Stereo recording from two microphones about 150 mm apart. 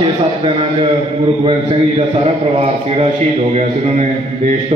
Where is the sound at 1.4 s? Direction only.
35° right (ahead or behind).